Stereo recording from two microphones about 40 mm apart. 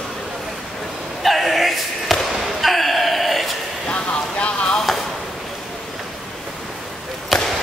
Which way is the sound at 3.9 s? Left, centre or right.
Left.